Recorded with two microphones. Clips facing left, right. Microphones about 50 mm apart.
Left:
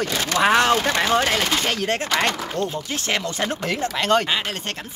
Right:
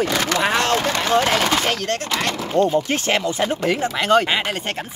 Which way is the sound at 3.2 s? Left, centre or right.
Centre.